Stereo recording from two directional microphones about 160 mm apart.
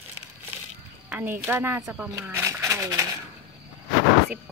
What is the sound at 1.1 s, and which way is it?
A woman's voice, 10° right (ahead or behind).